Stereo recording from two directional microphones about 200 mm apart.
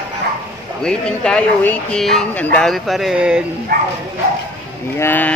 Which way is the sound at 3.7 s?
50° right (ahead or behind).